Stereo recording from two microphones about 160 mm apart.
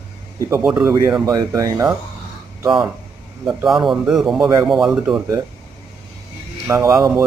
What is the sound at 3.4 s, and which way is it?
Speech, 5° right (ahead or behind).